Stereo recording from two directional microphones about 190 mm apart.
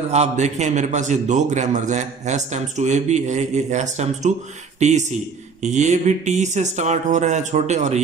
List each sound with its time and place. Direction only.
0.1 s a man's voice: 35° right (ahead or behind)